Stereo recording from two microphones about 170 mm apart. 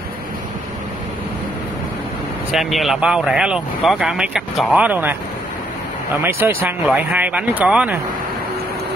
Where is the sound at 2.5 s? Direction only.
Centre (ahead or behind).